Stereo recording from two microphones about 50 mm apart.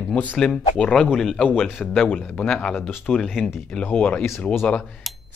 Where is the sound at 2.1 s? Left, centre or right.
Centre.